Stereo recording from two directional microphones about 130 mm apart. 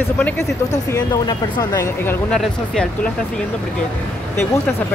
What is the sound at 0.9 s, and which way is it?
Speech, 25° left (ahead or behind).